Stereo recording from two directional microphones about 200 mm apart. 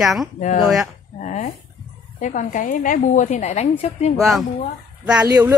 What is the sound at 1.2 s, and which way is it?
Speech, 40° left (ahead or behind).